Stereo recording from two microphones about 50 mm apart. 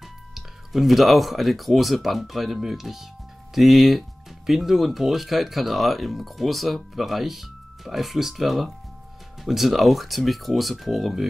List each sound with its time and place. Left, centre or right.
0.3 s speech: centre